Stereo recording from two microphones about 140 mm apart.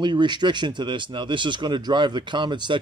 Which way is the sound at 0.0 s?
30° right (ahead or behind).